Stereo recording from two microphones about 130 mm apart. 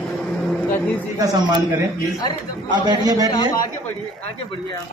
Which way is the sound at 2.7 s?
35° right (ahead or behind).